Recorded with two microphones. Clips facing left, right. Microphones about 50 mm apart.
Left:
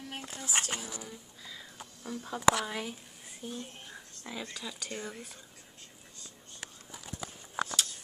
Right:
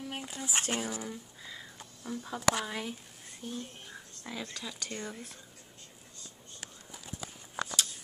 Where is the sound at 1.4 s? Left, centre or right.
Centre.